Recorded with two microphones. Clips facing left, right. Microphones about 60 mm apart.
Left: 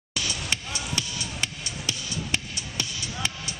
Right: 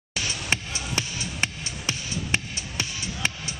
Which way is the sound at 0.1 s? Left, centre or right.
Right.